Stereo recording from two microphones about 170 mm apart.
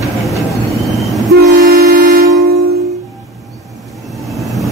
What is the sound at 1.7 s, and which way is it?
Toot, 60° right (ahead or behind).